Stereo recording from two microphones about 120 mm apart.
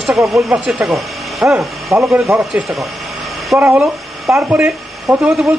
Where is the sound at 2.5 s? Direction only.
5° right (ahead or behind).